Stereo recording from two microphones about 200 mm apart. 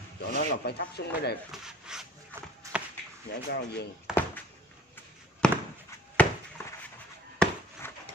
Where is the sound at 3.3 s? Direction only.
60° left (ahead or behind).